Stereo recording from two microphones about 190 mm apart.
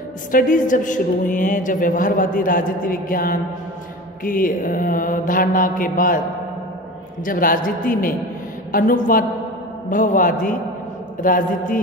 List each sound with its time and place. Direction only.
0.3 s a woman's voice: 45° left (ahead or behind)
7.2 s a woman's voice: 45° left (ahead or behind)